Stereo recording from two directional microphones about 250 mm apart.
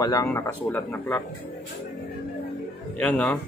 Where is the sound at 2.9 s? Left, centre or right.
Centre.